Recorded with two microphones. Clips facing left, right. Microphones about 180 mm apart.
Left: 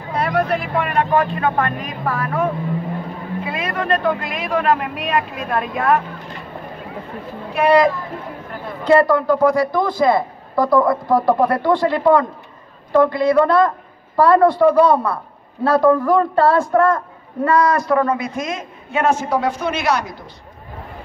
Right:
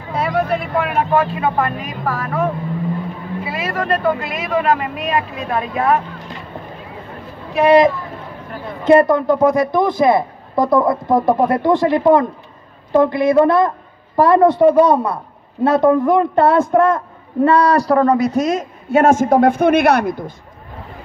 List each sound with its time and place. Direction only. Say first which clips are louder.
0.1 s speech: right 1 dB; 5° right (ahead or behind)
3.4 s speech: right 1 dB; 5° right (ahead or behind)
7.6 s speech: right 3 dB; 20° right (ahead or behind)
17.5 s a man's voice: right 2 dB; 35° right (ahead or behind); by 20.3 s 55° right (ahead or behind)